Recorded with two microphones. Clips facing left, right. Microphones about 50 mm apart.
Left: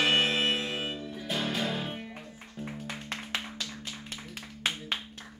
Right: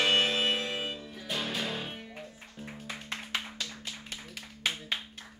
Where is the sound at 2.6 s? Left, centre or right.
Centre.